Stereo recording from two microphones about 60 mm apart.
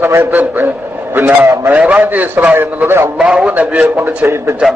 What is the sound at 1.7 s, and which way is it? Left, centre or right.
A man's voice, right.